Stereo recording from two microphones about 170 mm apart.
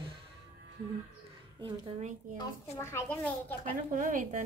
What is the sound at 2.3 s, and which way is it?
A woman's voice, 15° left (ahead or behind).